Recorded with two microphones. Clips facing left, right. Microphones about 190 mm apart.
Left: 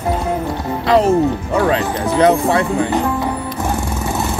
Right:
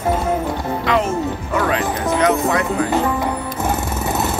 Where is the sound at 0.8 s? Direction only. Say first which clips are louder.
Left 7 dB; 35° left (ahead or behind).